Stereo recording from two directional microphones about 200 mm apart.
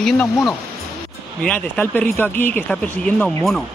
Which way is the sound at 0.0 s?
Centre (ahead or behind).